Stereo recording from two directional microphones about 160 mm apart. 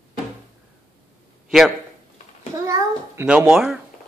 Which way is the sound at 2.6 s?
20° right (ahead or behind).